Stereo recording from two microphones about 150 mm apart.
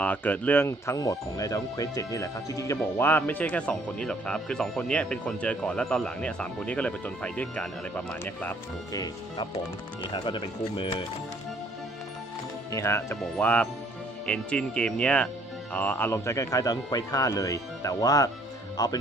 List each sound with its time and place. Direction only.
0.0 s speech: 10° left (ahead or behind)
8.9 s speech: 25° left (ahead or behind)
12.7 s speech: 20° left (ahead or behind)